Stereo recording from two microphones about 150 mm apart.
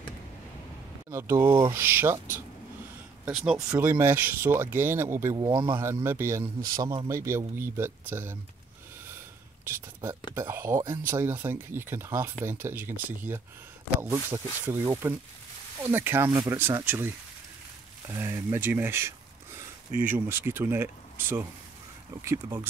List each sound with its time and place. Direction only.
1.1 s speech: 15° right (ahead or behind)
3.5 s speech: 20° right (ahead or behind)
6.0 s speech: 15° right (ahead or behind)
9.7 s speech: 15° right (ahead or behind)
16.3 s speech: 25° right (ahead or behind)
16.5 s speech: 15° right (ahead or behind)